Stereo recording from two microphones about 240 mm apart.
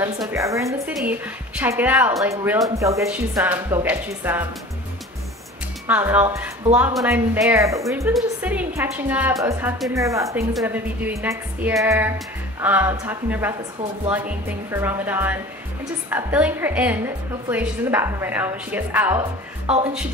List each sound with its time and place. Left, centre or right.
0.0 s speech: centre
5.9 s speech: centre
19.6 s speech: right